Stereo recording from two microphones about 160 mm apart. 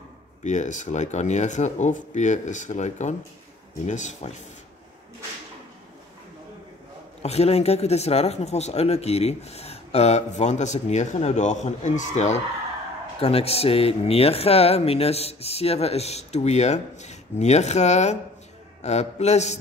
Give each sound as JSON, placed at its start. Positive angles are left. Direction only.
{"t": 0.4, "sound": "speech", "side_deg": 50}
{"t": 7.2, "sound": "speech", "side_deg": 40}